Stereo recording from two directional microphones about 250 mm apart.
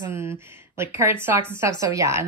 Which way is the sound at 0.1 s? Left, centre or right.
Centre.